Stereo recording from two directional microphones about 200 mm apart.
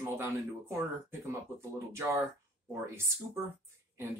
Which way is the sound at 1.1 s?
15° right (ahead or behind).